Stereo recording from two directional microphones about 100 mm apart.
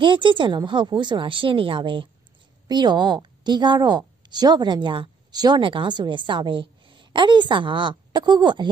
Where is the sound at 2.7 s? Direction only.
45° right (ahead or behind).